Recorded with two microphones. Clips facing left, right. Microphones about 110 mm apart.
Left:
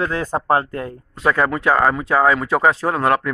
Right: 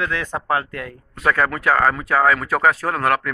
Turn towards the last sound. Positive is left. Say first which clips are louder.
# left 2 dB
turn(degrees=25)  # may be behind; listen again after turning